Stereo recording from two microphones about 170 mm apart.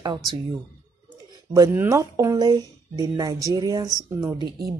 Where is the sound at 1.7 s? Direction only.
15° right (ahead or behind).